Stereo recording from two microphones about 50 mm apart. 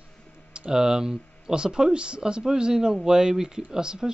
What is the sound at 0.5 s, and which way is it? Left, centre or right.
Speech, centre.